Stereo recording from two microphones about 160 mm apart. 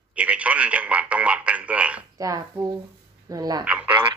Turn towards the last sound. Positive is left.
turn(degrees=-10)  # may be behind; listen again after turning